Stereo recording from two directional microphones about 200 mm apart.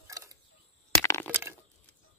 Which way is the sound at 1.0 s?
10° left (ahead or behind).